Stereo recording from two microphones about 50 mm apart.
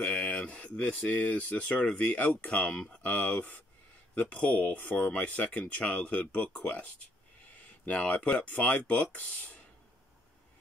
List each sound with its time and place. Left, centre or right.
0.0 s speech: left
7.8 s speech: left